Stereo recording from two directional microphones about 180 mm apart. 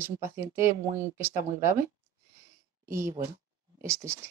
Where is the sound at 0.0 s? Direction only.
15° right (ahead or behind).